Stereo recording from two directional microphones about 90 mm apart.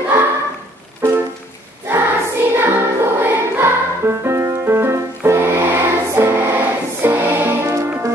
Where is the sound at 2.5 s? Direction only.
25° right (ahead or behind).